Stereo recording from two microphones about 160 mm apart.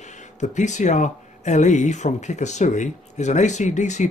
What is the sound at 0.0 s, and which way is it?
Speech, 45° left (ahead or behind).